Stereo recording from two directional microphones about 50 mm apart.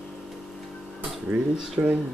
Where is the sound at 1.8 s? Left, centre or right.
Right.